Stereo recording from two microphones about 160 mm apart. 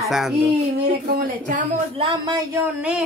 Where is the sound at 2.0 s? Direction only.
30° right (ahead or behind).